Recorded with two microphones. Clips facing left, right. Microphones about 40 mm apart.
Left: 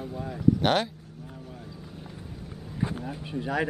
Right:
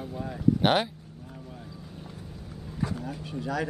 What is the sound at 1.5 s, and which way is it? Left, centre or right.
Vehicle, centre.